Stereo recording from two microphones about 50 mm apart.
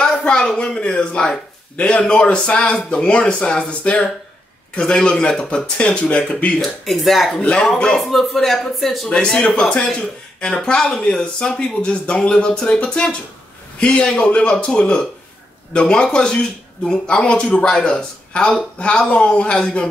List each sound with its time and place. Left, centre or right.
0.0 s a sound: centre
0.6 s speech: centre
6.8 s a man's voice: centre
7.4 s speech: centre
8.0 s a man's voice: centre
9.1 s speech: centre
11.0 s speech: left